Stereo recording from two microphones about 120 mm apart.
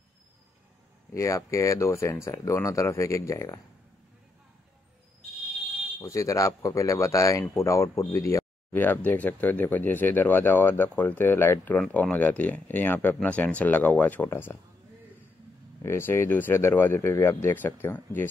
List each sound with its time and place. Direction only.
1.1 s speech: 25° left (ahead or behind)
5.9 s speech: 25° left (ahead or behind)
15.8 s speech: 20° left (ahead or behind)